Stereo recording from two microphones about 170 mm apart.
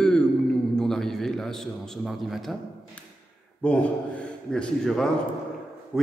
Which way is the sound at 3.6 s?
5° left (ahead or behind).